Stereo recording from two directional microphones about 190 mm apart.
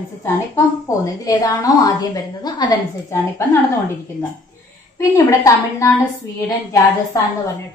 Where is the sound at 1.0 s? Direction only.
20° left (ahead or behind).